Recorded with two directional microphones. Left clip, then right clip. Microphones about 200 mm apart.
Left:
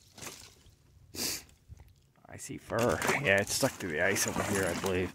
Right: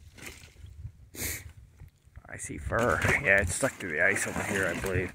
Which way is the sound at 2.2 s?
10° left (ahead or behind).